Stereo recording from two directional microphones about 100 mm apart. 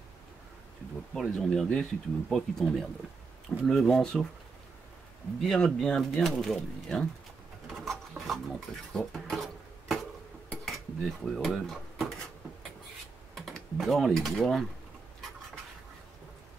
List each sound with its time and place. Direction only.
1.1 s speech: 5° left (ahead or behind)
5.4 s speech: 5° left (ahead or behind)
7.7 s filing: centre (ahead or behind)
8.3 s speech: 5° left (ahead or behind)
10.5 s dishes: centre (ahead or behind)
13.5 s speech: centre (ahead or behind)